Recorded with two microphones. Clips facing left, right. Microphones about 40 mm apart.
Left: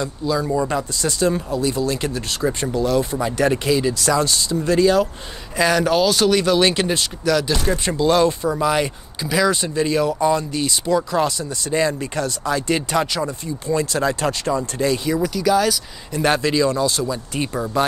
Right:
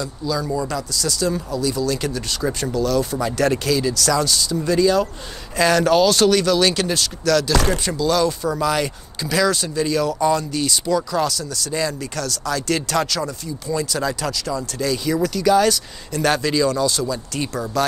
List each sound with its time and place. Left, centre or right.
0.0 s speech: left
5.6 s speech: centre
6.3 s speech: left
7.5 s speech: right
8.0 s speech: left
8.5 s speech: centre
9.6 s speech: left
13.7 s speech: left
15.2 s speech: centre
16.1 s speech: left